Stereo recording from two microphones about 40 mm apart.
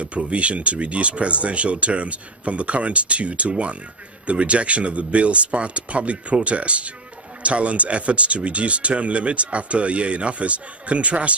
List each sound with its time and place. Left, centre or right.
0.0 s speech: right